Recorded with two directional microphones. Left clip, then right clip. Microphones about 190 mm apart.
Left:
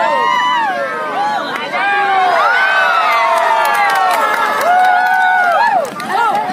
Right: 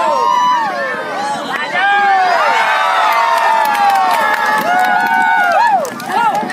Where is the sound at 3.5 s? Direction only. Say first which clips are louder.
Right 1 dB; 60° left (ahead or behind).